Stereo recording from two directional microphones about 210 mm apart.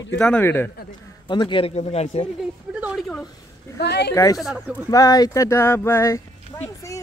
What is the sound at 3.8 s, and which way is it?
Speech, 55° left (ahead or behind).